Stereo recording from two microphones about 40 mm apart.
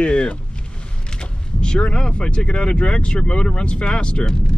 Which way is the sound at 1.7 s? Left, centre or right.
Left.